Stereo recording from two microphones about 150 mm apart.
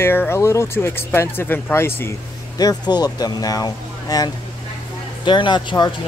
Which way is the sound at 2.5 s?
25° left (ahead or behind).